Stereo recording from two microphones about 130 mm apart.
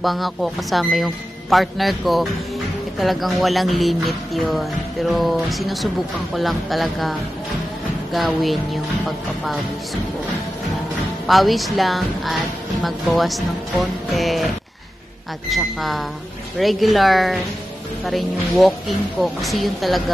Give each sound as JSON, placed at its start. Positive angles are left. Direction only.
{"t": 0.0, "sound": "music", "side_deg": 0}
{"t": 11.2, "sound": "music", "side_deg": 0}
{"t": 15.5, "sound": "music", "side_deg": 0}